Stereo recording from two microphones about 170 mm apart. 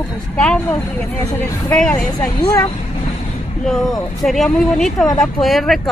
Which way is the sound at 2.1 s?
20° left (ahead or behind).